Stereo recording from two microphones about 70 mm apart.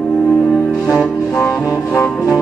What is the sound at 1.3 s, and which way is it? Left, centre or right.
Music, left.